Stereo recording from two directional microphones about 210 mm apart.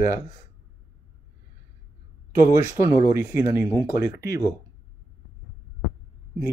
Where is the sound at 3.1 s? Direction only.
15° right (ahead or behind).